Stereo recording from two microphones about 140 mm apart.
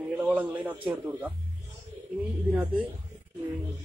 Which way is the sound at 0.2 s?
10° right (ahead or behind).